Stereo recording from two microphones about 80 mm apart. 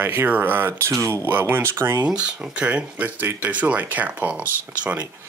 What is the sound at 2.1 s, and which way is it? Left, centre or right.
Speech, centre.